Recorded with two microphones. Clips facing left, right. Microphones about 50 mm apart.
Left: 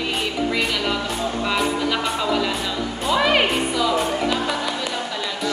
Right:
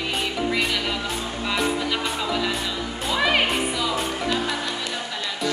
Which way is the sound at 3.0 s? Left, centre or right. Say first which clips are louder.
Left 3 dB; centre.